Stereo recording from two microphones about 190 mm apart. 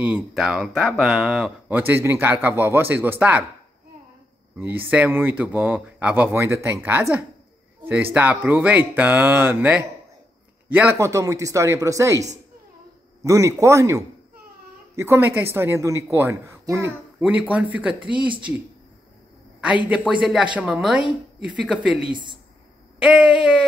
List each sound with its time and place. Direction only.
0.0 s speech: 5° right (ahead or behind)
4.6 s speech: 10° right (ahead or behind)
19.6 s speech: 5° right (ahead or behind)
22.1 s speech: 25° right (ahead or behind)
22.9 s speech: 5° right (ahead or behind)